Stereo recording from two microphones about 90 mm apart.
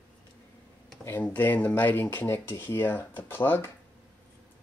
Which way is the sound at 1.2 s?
20° left (ahead or behind).